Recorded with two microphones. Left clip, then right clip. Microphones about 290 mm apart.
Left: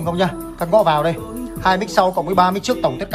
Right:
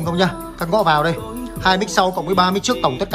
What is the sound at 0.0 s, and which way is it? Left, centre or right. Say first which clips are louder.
Speech: even; centre.